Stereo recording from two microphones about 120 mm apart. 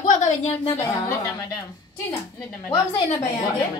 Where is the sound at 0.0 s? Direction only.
90° left; by 0.7 s 60° left (ahead or behind).